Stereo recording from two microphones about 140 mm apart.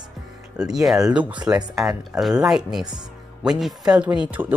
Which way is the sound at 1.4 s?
30° right (ahead or behind).